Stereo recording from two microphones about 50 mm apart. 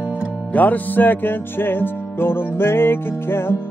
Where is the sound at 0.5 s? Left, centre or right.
Left.